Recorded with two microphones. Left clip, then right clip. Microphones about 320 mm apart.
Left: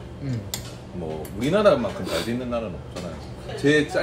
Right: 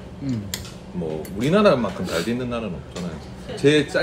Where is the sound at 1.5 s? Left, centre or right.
Right.